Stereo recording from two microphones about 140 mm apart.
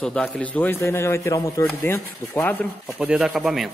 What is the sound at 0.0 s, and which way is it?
A man's voice, 10° left (ahead or behind).